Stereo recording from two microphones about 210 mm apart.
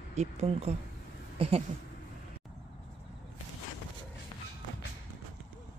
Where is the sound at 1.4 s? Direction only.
25° right (ahead or behind).